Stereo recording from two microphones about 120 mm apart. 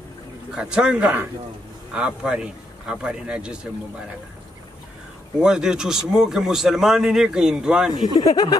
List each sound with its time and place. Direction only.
0.5 s speech: 5° right (ahead or behind)
5.4 s a man's voice: 5° right (ahead or behind)
7.9 s speech: 35° left (ahead or behind)